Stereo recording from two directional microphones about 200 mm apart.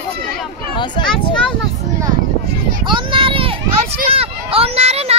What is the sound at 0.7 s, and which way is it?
Speech, 25° left (ahead or behind).